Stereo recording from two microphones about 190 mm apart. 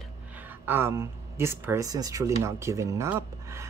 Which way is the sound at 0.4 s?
10° right (ahead or behind).